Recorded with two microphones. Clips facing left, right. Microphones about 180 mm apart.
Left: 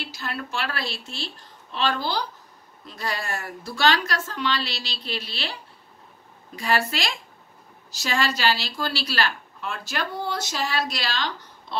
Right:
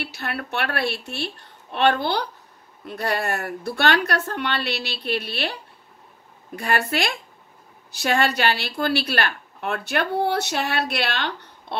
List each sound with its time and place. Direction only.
0.0 s a woman's voice: 65° right (ahead or behind)